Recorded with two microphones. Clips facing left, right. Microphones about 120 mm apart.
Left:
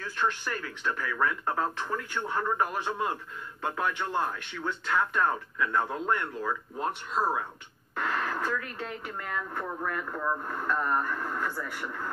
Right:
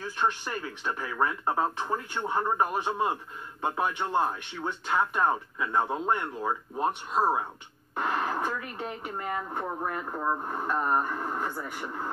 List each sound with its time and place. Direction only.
0.0 s speech: 20° right (ahead or behind)